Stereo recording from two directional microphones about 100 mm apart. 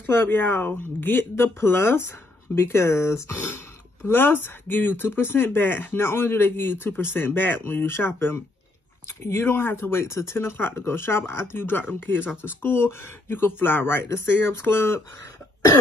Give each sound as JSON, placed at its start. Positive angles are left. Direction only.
{"t": 0.0, "sound": "speech", "side_deg": 20}